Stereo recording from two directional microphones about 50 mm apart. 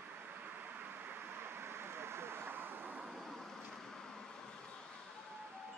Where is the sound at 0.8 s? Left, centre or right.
Right.